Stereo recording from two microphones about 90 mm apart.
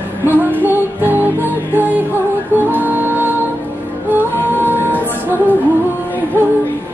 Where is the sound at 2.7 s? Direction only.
20° right (ahead or behind).